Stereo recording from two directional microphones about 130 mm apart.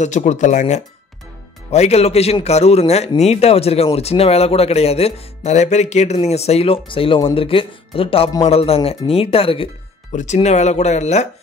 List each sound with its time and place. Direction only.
0.0 s speech: 65° left (ahead or behind)
1.7 s speech: 55° left (ahead or behind)
10.1 s speech: 65° left (ahead or behind)